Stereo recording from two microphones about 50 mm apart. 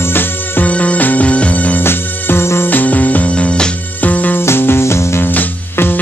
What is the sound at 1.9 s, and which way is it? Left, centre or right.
Music, left.